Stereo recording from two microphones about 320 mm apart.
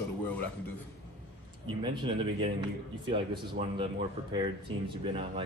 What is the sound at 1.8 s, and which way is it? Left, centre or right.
Speech, centre.